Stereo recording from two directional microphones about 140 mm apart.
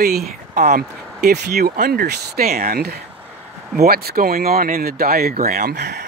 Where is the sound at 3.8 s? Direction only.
90° right.